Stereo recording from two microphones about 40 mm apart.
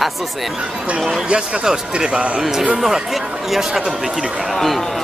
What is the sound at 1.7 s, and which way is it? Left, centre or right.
Speech, right.